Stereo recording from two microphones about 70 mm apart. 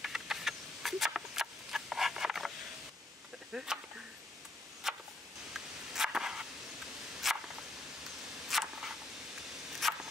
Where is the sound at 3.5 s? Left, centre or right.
Centre.